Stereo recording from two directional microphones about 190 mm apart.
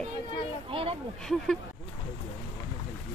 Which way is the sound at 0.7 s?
30° right (ahead or behind).